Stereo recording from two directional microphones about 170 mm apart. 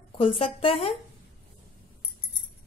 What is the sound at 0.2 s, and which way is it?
Speech, 35° left (ahead or behind).